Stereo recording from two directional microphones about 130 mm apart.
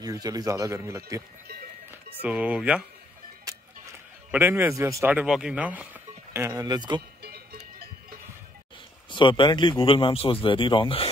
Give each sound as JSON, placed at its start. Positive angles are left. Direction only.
{"t": 0.0, "sound": "speech", "side_deg": -30}
{"t": 1.9, "sound": "speech", "side_deg": -10}
{"t": 4.3, "sound": "a man's voice", "side_deg": -15}
{"t": 5.1, "sound": "a man's voice", "side_deg": -5}
{"t": 6.3, "sound": "speech", "side_deg": -25}
{"t": 9.1, "sound": "a man's voice", "side_deg": 35}